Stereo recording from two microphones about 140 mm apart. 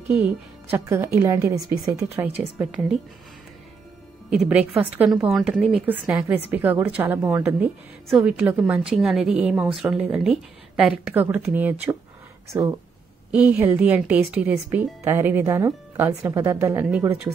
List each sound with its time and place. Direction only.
0.1 s speech: 15° right (ahead or behind)
2.6 s speech: 5° right (ahead or behind)
4.3 s speech: 10° right (ahead or behind)
12.4 s speech: 30° right (ahead or behind)
13.3 s speech: 10° right (ahead or behind)